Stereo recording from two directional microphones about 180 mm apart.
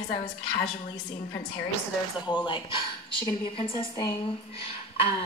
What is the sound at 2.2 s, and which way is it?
Speech, 25° left (ahead or behind).